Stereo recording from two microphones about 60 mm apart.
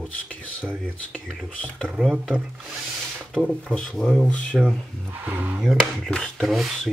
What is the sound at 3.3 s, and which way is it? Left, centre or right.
Speech, centre.